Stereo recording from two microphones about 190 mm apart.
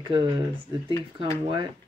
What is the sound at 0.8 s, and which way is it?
Speech, 25° right (ahead or behind).